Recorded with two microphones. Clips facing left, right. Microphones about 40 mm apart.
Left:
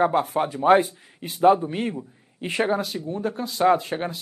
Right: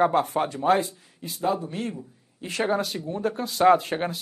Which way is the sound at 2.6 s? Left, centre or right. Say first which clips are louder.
Left 1 dB; centre.